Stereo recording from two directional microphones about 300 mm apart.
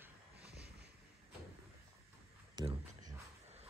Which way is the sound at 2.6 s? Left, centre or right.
Right.